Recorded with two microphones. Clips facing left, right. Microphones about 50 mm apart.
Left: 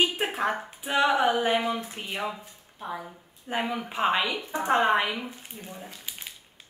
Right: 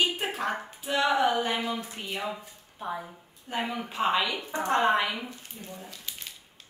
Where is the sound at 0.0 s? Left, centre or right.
Left.